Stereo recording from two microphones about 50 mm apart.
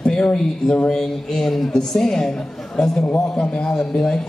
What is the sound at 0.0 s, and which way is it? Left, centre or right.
A man's voice, centre.